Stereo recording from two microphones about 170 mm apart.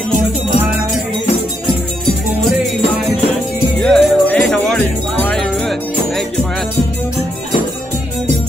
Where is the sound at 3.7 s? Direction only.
5° left (ahead or behind).